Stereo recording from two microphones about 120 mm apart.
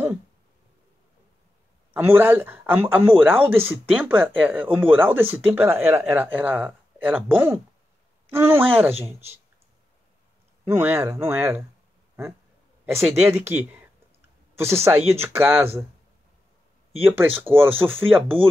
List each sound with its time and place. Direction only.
2.0 s speech: 15° right (ahead or behind)
10.6 s speech: 20° right (ahead or behind)
12.9 s speech: 20° right (ahead or behind)
17.0 s speech: 15° right (ahead or behind)